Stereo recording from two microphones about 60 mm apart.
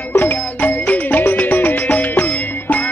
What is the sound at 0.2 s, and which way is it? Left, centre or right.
Music, left.